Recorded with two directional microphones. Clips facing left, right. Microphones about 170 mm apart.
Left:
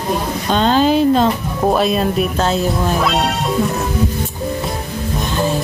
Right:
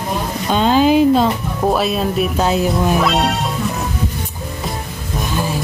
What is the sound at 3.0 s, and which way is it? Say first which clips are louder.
Speech: right 1 dB; centre (ahead or behind).